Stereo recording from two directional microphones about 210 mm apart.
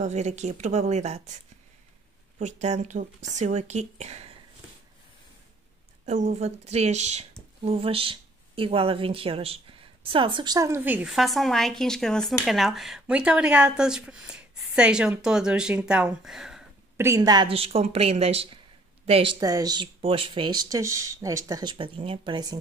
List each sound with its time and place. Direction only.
0.0 s speech: 30° right (ahead or behind)
6.0 s speech: 30° right (ahead or behind); by 16.6 s centre (ahead or behind)
16.9 s speech: 15° right (ahead or behind); by 19.3 s 30° right (ahead or behind)
19.4 s speech: 15° right (ahead or behind)